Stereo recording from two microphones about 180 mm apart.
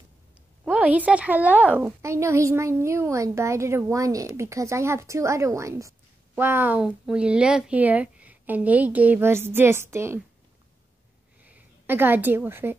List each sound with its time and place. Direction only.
0.7 s a woman's voice: 5° right (ahead or behind)
11.4 s a woman's voice: 10° right (ahead or behind)